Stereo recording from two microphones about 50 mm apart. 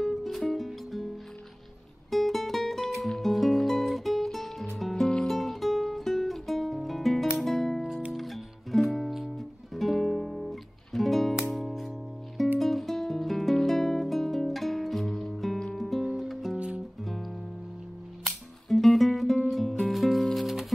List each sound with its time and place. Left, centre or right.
0.0 s music: centre
2.0 s music: centre
16.5 s music: right
17.0 s music: centre